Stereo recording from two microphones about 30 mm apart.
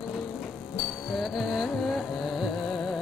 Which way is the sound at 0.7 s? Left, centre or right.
Centre.